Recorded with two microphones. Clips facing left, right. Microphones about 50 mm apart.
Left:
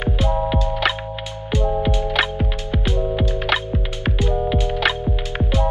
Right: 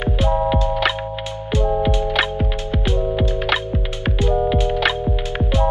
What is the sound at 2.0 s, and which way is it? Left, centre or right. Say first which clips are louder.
Music: right 1 dB; centre.